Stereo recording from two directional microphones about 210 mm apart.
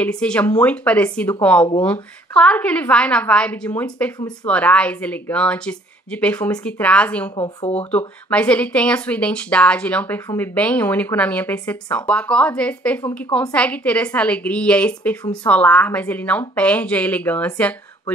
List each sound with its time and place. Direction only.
0.0 s speech: 5° left (ahead or behind)
7.3 s speech: 30° left (ahead or behind)
7.9 s a woman's voice: 5° left (ahead or behind)